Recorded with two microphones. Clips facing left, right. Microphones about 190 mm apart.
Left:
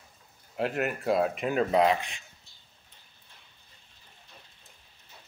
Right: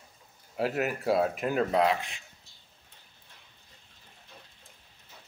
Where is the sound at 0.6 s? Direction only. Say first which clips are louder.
Even; centre (ahead or behind).